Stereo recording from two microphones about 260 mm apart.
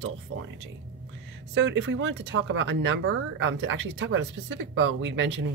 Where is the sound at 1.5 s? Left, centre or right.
Right.